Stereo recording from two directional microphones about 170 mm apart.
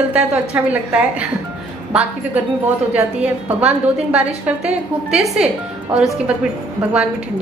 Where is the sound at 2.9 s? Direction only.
10° right (ahead or behind).